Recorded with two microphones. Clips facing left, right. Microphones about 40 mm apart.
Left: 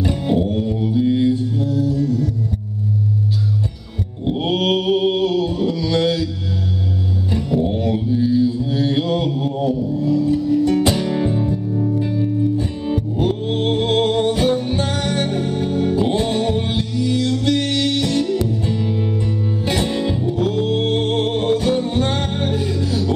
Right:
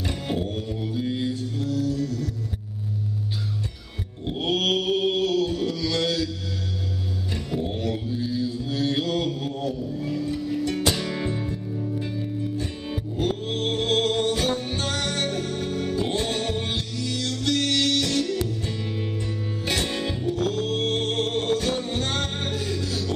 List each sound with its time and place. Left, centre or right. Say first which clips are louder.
0.0 s music: left 9 dB; centre
4.2 s mantra: left 5 dB; centre
7.2 s music: left 10 dB; centre
7.7 s mantra: left 8 dB; centre
9.9 s music: left 10 dB; centre
10.8 s music: left 7 dB; centre
18.8 s music: left 8 dB; centre
19.6 s music: left 5 dB; centre